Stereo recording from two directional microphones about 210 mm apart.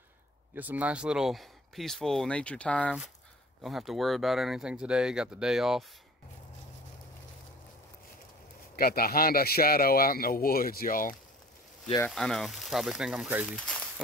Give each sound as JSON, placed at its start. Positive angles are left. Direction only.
{"t": 0.6, "sound": "speech", "side_deg": -10}
{"t": 8.7, "sound": "a man's voice", "side_deg": 45}
{"t": 12.1, "sound": "speech", "side_deg": 0}
{"t": 13.6, "sound": "a sound", "side_deg": 5}